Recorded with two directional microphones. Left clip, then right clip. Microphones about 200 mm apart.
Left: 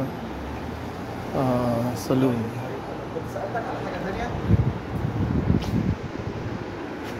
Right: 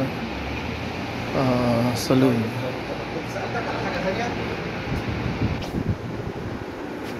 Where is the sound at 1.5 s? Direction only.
5° left (ahead or behind).